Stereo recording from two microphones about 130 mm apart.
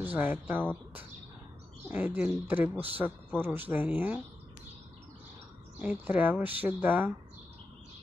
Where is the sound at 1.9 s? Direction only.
15° right (ahead or behind).